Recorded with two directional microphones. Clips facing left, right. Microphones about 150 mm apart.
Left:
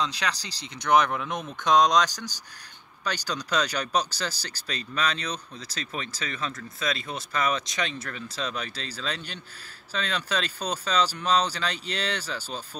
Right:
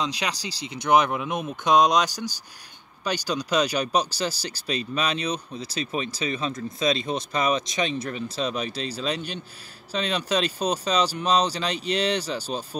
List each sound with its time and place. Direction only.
0.0 s speech: 15° right (ahead or behind)